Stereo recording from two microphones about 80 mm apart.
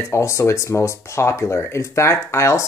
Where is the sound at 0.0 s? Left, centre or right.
Left.